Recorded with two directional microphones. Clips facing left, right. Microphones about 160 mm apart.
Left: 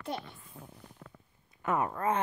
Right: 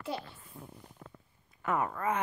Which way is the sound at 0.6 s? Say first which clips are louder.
Right 2 dB; 70° left (ahead or behind).